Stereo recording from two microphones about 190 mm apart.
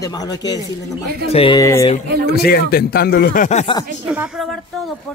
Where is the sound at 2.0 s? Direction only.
60° right (ahead or behind).